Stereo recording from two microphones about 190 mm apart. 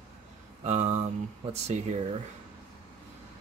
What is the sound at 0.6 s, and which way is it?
Speech, 40° right (ahead or behind).